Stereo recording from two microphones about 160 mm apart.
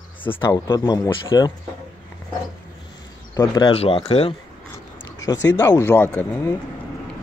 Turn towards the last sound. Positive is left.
turn(degrees=10)  # may be behind; listen again after turning